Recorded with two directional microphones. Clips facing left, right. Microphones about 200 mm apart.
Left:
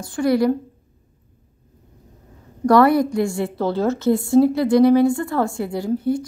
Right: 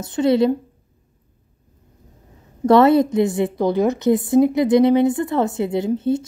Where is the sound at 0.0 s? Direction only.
20° right (ahead or behind).